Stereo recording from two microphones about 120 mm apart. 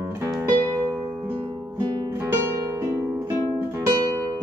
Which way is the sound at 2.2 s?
20° right (ahead or behind).